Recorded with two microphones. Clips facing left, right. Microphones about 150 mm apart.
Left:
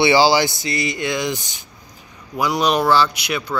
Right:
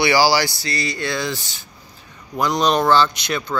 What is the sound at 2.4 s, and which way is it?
Speech, 10° left (ahead or behind).